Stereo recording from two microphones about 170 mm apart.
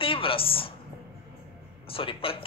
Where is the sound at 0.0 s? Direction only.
30° left (ahead or behind).